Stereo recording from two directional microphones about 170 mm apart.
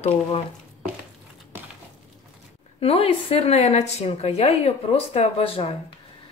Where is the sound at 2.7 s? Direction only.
35° left (ahead or behind).